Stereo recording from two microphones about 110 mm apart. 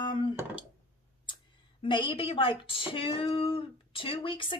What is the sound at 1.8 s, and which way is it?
A woman's voice, 50° left (ahead or behind).